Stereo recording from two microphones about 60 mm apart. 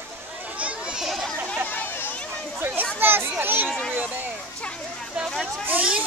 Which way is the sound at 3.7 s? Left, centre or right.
Centre.